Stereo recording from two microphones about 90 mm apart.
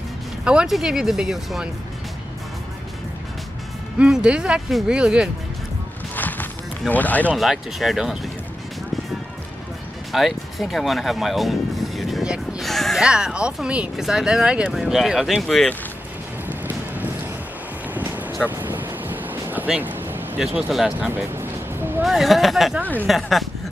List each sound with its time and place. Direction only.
0.5 s speech: 5° right (ahead or behind)
4.0 s speech: 10° right (ahead or behind)
6.1 s music: 20° left (ahead or behind)
6.9 s speech: 20° left (ahead or behind)
7.3 s speech: centre (ahead or behind)
10.1 s music: centre (ahead or behind)
13.0 s speech: 10° right (ahead or behind)
16.4 s music: 20° right (ahead or behind)
17.9 s a sound: 20° right (ahead or behind)
18.4 s vehicle: 20° right (ahead or behind)
19.8 s a sound: 25° right (ahead or behind)
20.3 s speech: 10° right (ahead or behind)
21.1 s music: 25° right (ahead or behind)
22.0 s speech: centre (ahead or behind)